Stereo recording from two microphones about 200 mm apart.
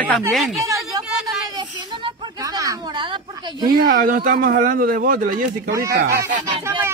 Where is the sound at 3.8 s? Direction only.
45° right (ahead or behind).